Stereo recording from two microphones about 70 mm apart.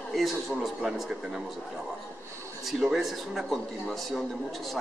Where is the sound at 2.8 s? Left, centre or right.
Centre.